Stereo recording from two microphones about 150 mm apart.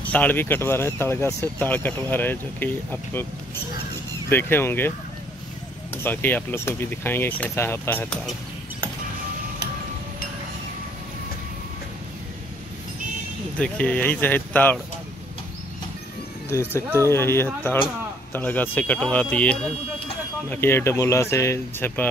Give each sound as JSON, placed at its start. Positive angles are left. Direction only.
{"t": 0.0, "sound": "speech", "side_deg": 10}
{"t": 4.3, "sound": "speech", "side_deg": 15}
{"t": 6.0, "sound": "speech", "side_deg": 15}
{"t": 13.6, "sound": "speech", "side_deg": 10}
{"t": 16.4, "sound": "speech", "side_deg": 15}